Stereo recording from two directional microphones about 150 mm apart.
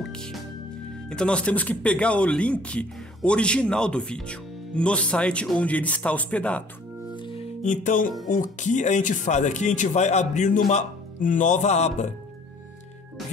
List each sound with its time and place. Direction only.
0.0 s music: 5° left (ahead or behind)
1.0 s speech: 5° left (ahead or behind)
7.2 s music: 35° left (ahead or behind)
7.6 s speech: 55° left (ahead or behind)